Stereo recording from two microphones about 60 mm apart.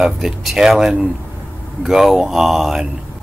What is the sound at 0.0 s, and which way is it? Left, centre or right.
Speech, centre.